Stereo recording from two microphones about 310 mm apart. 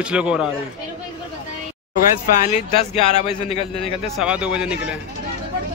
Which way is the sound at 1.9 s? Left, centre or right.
Left.